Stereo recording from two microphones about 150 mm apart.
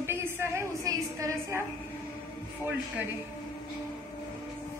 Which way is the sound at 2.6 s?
10° right (ahead or behind).